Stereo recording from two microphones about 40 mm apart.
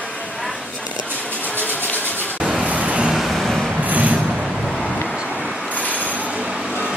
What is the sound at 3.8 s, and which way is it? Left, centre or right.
Train, right.